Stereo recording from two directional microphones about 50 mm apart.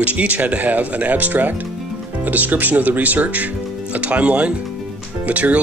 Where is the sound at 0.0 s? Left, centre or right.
Right.